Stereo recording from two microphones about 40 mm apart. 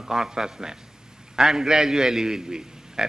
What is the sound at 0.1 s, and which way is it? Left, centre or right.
A man's voice, centre.